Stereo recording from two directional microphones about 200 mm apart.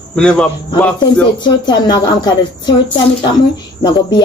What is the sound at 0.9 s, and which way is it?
A woman's voice, 20° left (ahead or behind).